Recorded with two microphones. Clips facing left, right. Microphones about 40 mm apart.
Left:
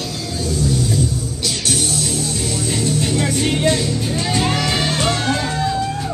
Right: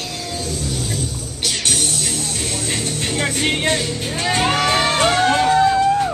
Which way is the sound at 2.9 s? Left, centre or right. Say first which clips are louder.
Left 3 dB; right.